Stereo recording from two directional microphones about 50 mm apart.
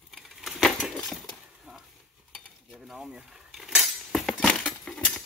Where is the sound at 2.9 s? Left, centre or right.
Centre.